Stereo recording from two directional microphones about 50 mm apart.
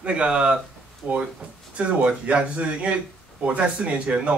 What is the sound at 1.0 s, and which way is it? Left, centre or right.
Speech, right.